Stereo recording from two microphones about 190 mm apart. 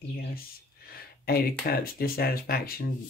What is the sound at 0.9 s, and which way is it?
Speech, 50° left (ahead or behind).